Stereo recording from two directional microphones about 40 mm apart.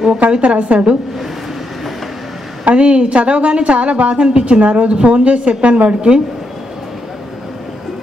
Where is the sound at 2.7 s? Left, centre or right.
Right.